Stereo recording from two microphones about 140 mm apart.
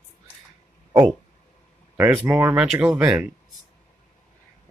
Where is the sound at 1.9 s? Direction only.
15° right (ahead or behind).